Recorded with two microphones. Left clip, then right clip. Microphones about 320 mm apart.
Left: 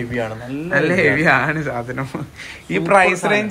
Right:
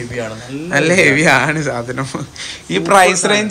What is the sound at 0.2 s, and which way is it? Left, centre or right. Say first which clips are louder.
Speech: right 1 dB; left.